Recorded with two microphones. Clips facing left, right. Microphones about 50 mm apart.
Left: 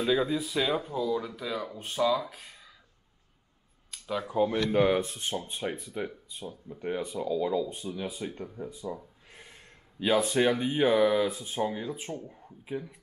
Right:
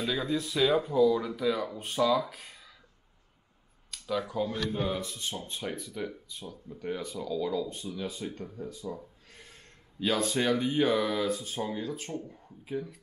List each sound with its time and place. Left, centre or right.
0.1 s speech: centre
0.4 s speech: centre
3.9 s speech: centre
4.6 s speech: left
5.0 s speech: left
5.5 s speech: centre